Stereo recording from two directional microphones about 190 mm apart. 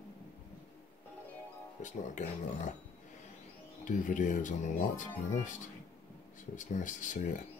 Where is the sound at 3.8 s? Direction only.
45° left (ahead or behind).